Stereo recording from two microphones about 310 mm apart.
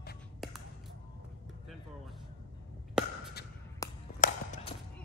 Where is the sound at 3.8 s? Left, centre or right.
Centre.